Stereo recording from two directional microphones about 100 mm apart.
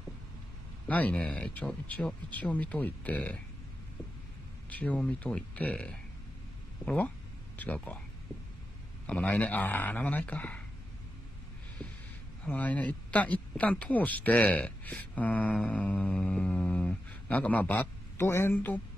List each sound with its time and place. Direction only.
0.8 s speech: 15° left (ahead or behind)
4.6 s speech: 15° left (ahead or behind)
9.0 s speech: 15° left (ahead or behind)
12.4 s speech: 15° left (ahead or behind)